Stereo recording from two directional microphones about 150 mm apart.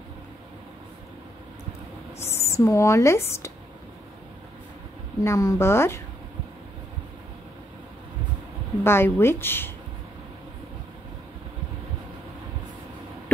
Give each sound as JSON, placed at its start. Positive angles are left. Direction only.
{"t": 2.1, "sound": "speech", "side_deg": 15}
{"t": 5.2, "sound": "speech", "side_deg": 20}
{"t": 8.8, "sound": "speech", "side_deg": 15}